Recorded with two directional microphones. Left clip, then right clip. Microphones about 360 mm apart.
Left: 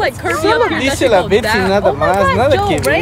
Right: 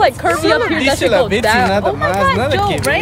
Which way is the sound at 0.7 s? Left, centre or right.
Centre.